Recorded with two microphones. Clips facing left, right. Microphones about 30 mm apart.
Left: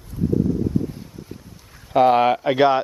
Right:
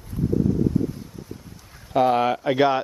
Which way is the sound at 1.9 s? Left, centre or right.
Centre.